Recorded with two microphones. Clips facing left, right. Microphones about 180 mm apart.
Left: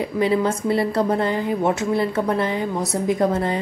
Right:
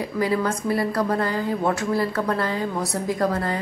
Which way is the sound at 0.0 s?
20° left (ahead or behind).